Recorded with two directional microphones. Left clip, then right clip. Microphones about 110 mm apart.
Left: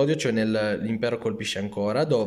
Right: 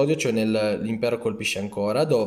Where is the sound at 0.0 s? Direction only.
20° right (ahead or behind).